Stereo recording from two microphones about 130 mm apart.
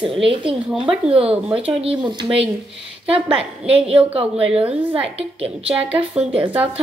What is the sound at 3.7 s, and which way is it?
Speech, 45° right (ahead or behind).